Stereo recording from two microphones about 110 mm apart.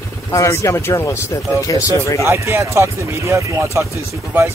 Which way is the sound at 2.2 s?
25° right (ahead or behind).